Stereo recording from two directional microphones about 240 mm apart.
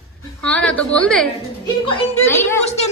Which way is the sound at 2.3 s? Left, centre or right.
Centre.